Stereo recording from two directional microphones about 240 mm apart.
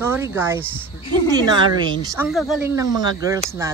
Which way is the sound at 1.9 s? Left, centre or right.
Centre.